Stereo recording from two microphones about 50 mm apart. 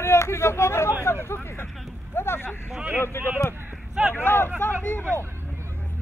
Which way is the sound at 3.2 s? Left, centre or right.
Left.